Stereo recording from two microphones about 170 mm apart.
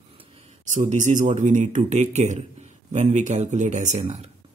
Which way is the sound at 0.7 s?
45° right (ahead or behind).